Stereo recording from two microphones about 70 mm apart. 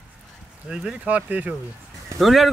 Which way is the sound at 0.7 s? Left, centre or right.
Centre.